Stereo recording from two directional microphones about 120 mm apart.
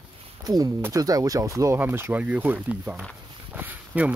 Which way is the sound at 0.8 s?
30° right (ahead or behind).